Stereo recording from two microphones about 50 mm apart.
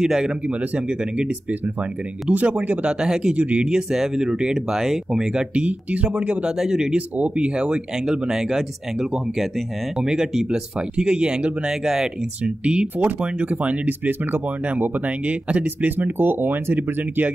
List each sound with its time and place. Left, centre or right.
0.0 s speech: centre
0.5 s speech: right
2.2 s speech: right
2.9 s speech: centre
3.3 s speech: right
3.6 s speech: centre; by 6.4 s right
6.4 s speech: centre
7.2 s speech: right
9.9 s speech: centre
12.4 s speech: right